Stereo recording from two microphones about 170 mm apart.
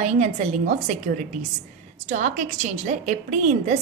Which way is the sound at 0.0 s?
45° right (ahead or behind).